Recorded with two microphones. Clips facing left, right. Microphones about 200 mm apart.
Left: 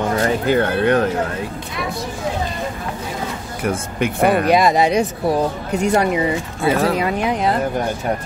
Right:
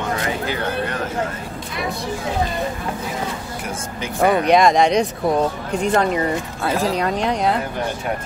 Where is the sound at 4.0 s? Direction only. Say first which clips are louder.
Left 1 dB; 60° left (ahead or behind).